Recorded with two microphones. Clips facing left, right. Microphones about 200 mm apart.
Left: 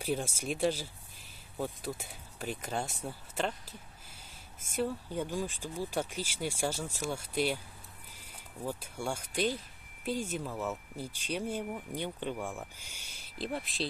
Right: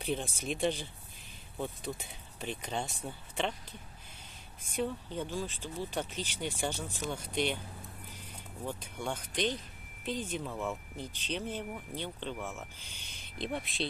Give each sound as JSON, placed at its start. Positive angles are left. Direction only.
{"t": 0.4, "sound": "speech", "side_deg": 5}
{"t": 4.7, "sound": "speech", "side_deg": 10}
{"t": 8.6, "sound": "speech", "side_deg": 10}